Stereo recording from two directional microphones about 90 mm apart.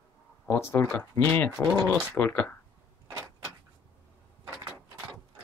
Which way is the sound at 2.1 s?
20° left (ahead or behind).